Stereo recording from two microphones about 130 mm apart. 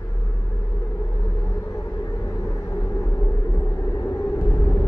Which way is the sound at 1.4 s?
20° left (ahead or behind).